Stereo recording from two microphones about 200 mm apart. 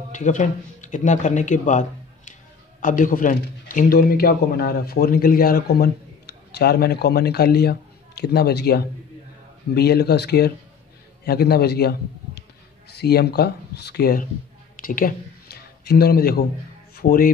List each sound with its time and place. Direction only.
0.1 s a man's voice: 40° left (ahead or behind)